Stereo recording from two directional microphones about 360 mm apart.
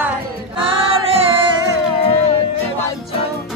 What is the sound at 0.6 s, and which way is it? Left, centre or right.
Female singing, centre.